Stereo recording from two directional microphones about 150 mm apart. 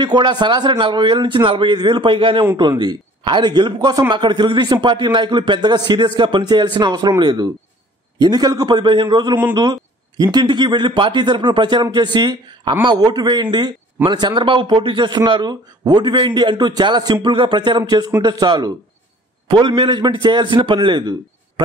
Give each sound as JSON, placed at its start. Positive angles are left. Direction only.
{"t": 0.0, "sound": "a man's voice", "side_deg": -30}